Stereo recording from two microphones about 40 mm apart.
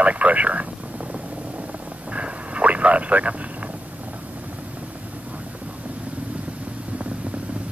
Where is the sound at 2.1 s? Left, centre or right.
Right.